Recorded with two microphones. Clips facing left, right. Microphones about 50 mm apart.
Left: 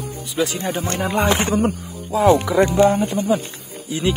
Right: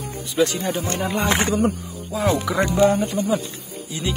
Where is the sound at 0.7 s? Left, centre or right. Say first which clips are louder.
Left 1 dB; left.